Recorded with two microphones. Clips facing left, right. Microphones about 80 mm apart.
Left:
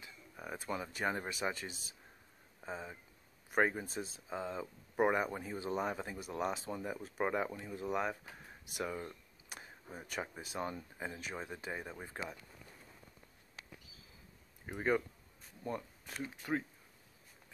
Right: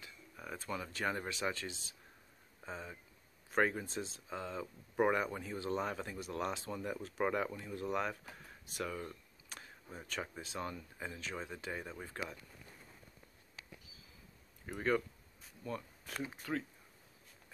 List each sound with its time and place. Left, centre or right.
0.0 s speech: centre
14.7 s speech: centre
16.4 s speech: left